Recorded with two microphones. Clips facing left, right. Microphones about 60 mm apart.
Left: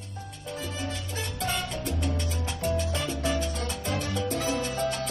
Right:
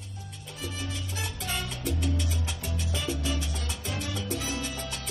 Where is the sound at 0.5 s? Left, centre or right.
Left.